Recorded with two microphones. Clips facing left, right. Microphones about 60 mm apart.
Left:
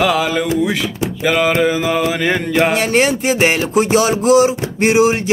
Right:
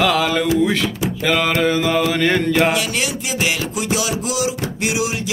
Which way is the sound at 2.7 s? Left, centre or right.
Left.